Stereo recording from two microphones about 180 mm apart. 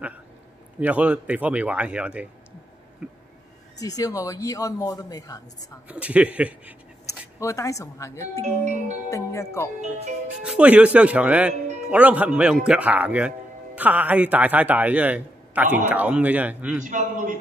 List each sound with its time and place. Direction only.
0.7 s a man's voice: 10° right (ahead or behind)
3.0 s a sound: 5° right (ahead or behind)
3.8 s a man's voice: 20° left (ahead or behind)
5.9 s a man's voice: 10° right (ahead or behind)
7.1 s speech: 15° left (ahead or behind)
8.5 s a man's voice: 45° right (ahead or behind)
9.1 s speech: 15° left (ahead or behind)
10.4 s a man's voice: 5° right (ahead or behind)
16.8 s a man's voice: 45° right (ahead or behind)